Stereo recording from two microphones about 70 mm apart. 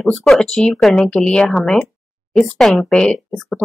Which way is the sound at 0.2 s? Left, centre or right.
Centre.